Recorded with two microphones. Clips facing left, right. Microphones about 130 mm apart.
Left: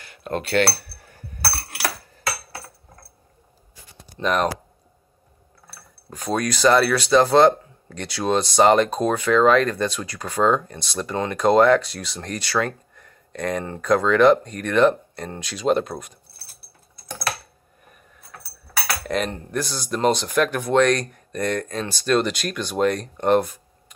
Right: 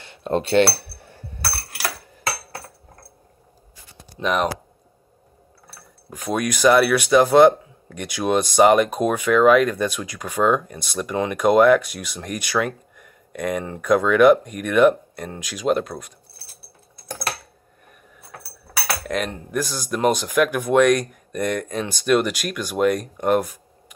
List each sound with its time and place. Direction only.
0.0 s cutlery: 25° right (ahead or behind)
1.0 s a sound: 25° right (ahead or behind)
4.2 s cutlery: centre (ahead or behind)
6.0 s speech: 15° right (ahead or behind)
19.0 s cutlery: centre (ahead or behind)
19.9 s speech: 10° right (ahead or behind)